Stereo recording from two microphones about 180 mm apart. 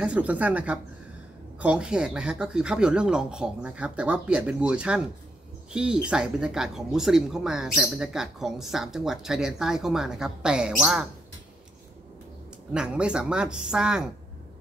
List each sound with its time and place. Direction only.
0.0 s speech: 10° right (ahead or behind)
12.7 s speech: 5° right (ahead or behind)